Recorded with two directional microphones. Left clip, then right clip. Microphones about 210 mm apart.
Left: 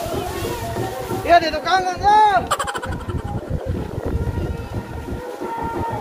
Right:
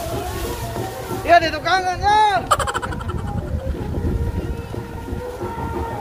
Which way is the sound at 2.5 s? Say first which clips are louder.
Right 3 dB; centre (ahead or behind).